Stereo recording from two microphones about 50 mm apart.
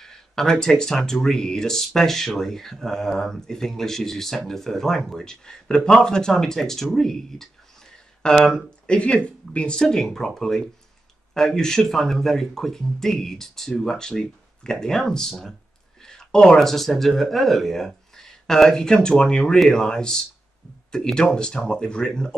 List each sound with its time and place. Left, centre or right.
0.0 s speech: centre
16.0 s a sound: centre
16.5 s speech: centre